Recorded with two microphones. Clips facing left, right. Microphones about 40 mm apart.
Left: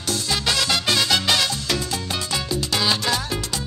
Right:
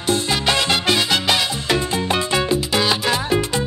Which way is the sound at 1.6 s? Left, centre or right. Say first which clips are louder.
Right 6 dB; right.